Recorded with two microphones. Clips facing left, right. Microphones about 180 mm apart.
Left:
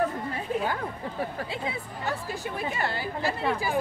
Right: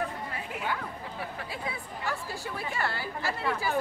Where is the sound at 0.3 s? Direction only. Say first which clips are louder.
Left 6 dB; 35° left (ahead or behind).